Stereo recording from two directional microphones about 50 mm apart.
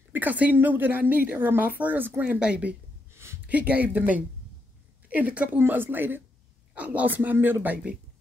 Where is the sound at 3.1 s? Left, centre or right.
Right.